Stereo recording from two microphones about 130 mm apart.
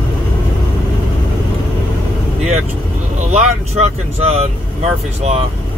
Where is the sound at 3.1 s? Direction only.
60° right (ahead or behind).